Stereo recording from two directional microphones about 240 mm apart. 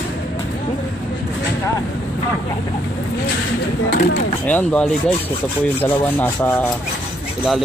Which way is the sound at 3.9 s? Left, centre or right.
Left.